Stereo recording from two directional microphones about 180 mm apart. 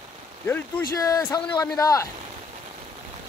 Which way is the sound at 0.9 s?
20° left (ahead or behind).